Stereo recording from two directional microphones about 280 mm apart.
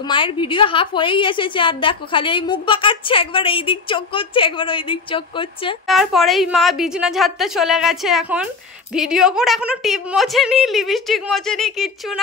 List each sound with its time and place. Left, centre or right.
0.1 s a woman's voice: centre
5.9 s a woman's voice: centre